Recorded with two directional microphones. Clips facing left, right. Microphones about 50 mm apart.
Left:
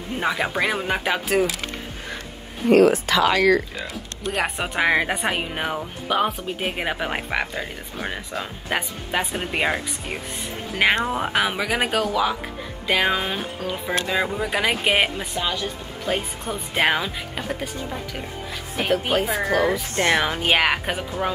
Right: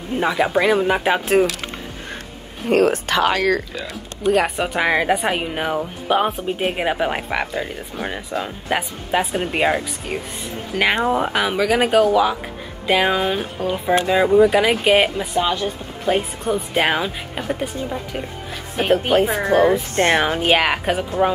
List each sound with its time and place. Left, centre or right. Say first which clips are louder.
0.2 s speech: right 5 dB; centre
2.7 s speech: left 1 dB; right
4.3 s speech: right 7 dB; centre
5.8 s speech: right 4 dB; centre
6.6 s speech: right 5 dB; centre
13.7 s speech: right 8 dB; centre
15.3 s speech: right 6 dB; right
16.1 s speech: right 7 dB; centre
18.9 s speech: right 5 dB; right
20.1 s speech: right 2 dB; centre
20.4 s speech: right 3 dB; centre